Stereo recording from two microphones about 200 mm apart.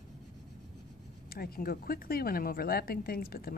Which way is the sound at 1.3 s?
50° left (ahead or behind).